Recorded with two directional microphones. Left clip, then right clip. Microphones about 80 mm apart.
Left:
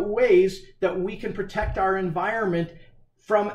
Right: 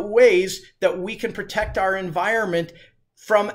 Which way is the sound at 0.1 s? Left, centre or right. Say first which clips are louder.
Right 4 dB; right.